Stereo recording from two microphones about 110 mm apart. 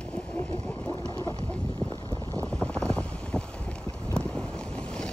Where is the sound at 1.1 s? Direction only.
35° left (ahead or behind).